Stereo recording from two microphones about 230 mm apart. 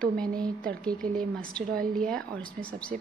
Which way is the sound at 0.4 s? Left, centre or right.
Centre.